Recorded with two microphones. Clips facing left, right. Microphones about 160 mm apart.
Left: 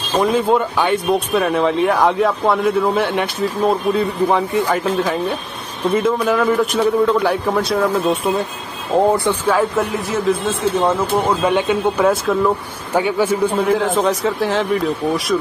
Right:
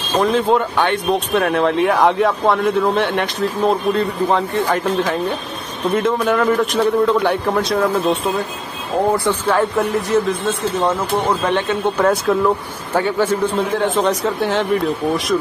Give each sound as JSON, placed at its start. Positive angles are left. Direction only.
{"t": 0.2, "sound": "speech", "side_deg": 0}
{"t": 9.1, "sound": "speech", "side_deg": 20}
{"t": 9.5, "sound": "speech", "side_deg": 0}
{"t": 12.9, "sound": "speech", "side_deg": 10}
{"t": 13.7, "sound": "speech", "side_deg": 0}